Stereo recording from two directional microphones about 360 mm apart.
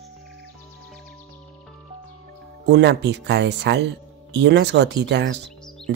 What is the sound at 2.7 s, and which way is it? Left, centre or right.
Speech, right.